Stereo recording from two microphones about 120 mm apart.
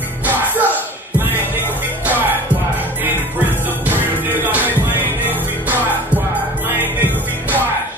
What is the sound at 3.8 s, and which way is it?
Music, 15° right (ahead or behind).